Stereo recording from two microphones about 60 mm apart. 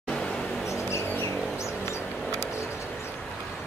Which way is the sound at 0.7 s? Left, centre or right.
Left.